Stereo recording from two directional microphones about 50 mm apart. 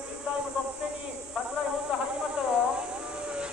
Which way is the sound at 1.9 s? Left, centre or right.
Centre.